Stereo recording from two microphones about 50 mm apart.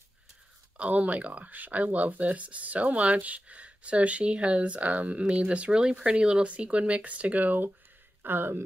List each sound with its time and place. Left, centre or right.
0.7 s speech: right
8.2 s speech: right